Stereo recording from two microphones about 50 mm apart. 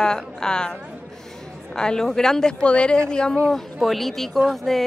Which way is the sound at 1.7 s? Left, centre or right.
Centre.